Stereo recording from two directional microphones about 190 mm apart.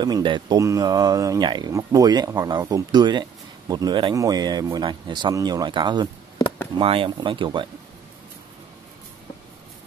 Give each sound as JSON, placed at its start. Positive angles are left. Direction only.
{"t": 0.0, "sound": "speech", "side_deg": -25}